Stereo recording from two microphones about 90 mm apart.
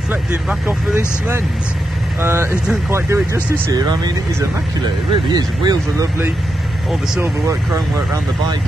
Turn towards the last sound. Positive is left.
turn(degrees=-35)  # may be behind; listen again after turning